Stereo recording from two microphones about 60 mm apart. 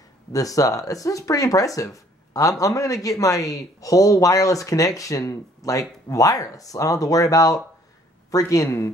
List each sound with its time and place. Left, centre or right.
0.3 s speech: left
8.3 s speech: left